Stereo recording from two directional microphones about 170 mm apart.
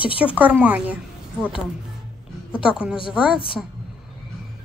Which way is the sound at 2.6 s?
5° right (ahead or behind).